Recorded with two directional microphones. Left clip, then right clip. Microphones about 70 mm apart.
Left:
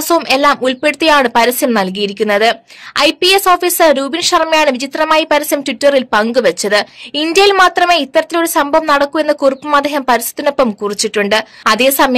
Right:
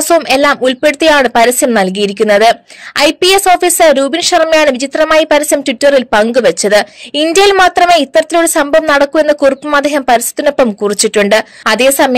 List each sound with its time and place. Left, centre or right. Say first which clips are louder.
0.1 s a woman's voice: right 2 dB; right
2.0 s speech: right 4 dB; right
3.0 s a woman's voice: right 2 dB; right
7.6 s a woman's voice: right 3 dB; right
10.8 s speech: right 5 dB; right
11.6 s a woman's voice: left 1 dB; right